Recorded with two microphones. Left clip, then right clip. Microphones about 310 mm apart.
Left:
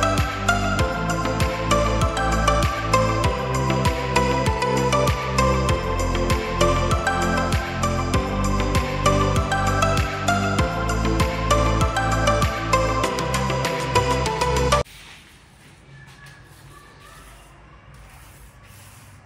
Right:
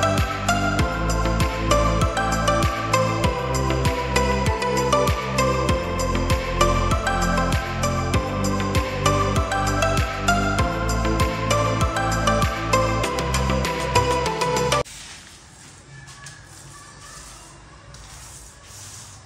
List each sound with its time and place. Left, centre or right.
0.0 s music: centre